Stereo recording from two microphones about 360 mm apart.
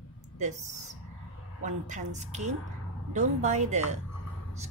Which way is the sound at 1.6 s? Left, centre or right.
Centre.